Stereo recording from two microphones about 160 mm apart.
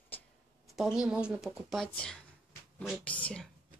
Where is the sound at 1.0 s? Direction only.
5° right (ahead or behind).